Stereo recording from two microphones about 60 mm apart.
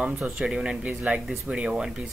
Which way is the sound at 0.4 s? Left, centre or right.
Centre.